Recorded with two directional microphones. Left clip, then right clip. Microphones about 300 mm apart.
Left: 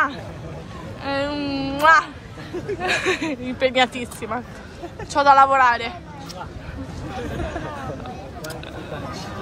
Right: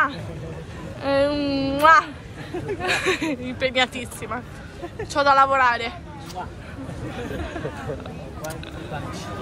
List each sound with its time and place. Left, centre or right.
1.0 s a sound: centre
2.8 s speech: centre
7.3 s speech: centre